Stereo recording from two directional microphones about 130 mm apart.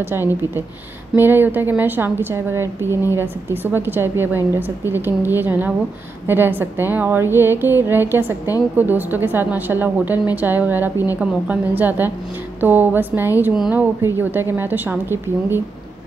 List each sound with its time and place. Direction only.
0.0 s a woman's voice: 15° right (ahead or behind)